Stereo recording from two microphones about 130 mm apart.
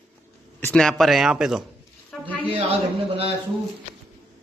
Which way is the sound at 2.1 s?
5° left (ahead or behind).